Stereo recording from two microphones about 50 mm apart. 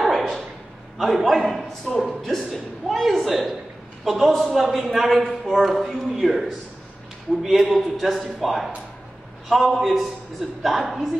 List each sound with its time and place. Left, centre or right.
0.0 s a sound: centre
0.9 s a man's voice: centre
9.8 s a man's voice: centre